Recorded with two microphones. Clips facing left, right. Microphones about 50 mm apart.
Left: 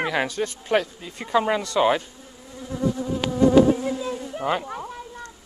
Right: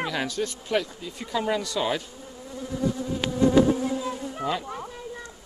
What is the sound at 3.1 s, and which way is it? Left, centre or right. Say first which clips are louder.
Bee: left 4 dB; centre.